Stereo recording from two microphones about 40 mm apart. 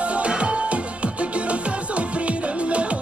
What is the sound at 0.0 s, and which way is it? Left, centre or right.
Music, right.